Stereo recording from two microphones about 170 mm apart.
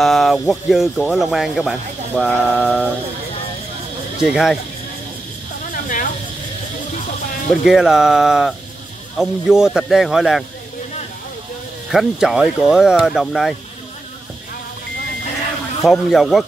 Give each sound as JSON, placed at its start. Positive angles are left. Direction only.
{"t": 0.0, "sound": "speech", "side_deg": 0}
{"t": 2.5, "sound": "a sound", "side_deg": -5}
{"t": 4.2, "sound": "speech", "side_deg": -5}
{"t": 5.7, "sound": "snake", "side_deg": 55}
{"t": 7.4, "sound": "speech", "side_deg": -5}
{"t": 11.9, "sound": "speech", "side_deg": 0}
{"t": 15.8, "sound": "speech", "side_deg": 0}